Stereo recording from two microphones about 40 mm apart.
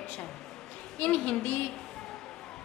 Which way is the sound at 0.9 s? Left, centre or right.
Left.